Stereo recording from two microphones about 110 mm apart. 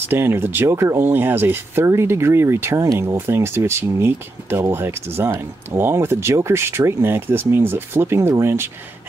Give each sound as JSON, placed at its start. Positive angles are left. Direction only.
{"t": 0.1, "sound": "speech", "side_deg": -20}